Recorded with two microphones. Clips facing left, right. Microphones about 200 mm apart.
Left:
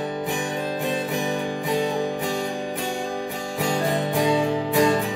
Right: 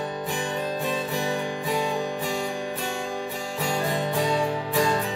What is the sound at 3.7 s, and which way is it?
Music, 15° left (ahead or behind).